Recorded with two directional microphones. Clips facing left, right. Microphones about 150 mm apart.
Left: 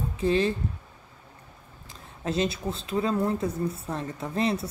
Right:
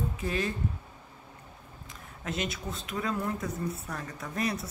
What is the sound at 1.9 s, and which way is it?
Speech, 30° left (ahead or behind).